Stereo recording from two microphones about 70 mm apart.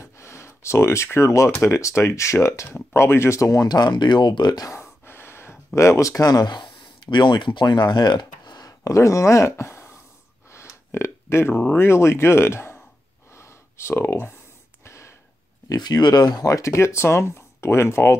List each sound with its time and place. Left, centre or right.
0.0 s a sound: left
1.5 s speech: left
3.6 s speech: left
4.6 s gasp: left
5.8 s speech: left
7.1 s speech: left
10.5 s a sound: left
11.6 s speech: left
13.3 s a sound: left
14.9 s a sound: left
15.7 s speech: left
16.4 s speech: left